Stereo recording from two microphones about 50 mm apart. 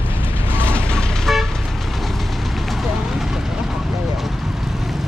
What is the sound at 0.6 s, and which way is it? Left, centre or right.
Vehicle, left.